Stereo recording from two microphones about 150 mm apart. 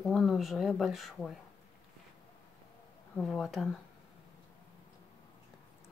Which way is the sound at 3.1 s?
Centre (ahead or behind).